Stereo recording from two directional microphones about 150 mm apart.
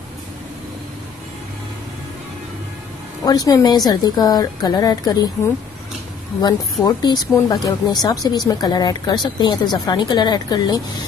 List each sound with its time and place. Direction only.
3.3 s a woman's voice: 25° left (ahead or behind)
6.4 s a woman's voice: 25° left (ahead or behind)